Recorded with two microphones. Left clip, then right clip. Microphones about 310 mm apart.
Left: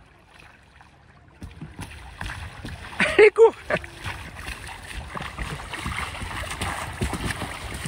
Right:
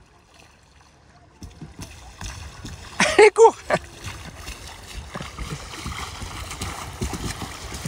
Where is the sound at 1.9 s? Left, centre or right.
Centre.